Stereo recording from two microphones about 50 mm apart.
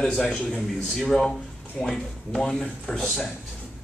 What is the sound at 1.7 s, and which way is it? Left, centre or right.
A man's voice, centre.